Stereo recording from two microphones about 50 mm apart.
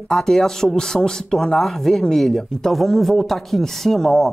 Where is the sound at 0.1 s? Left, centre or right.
Centre.